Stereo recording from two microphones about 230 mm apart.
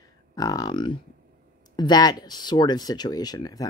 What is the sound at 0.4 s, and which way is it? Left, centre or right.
Speech, centre.